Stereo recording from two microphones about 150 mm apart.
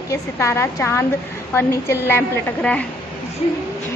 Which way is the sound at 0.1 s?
20° left (ahead or behind).